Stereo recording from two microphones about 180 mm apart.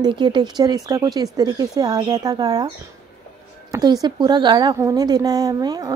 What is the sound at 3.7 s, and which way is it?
A woman's voice, 20° right (ahead or behind).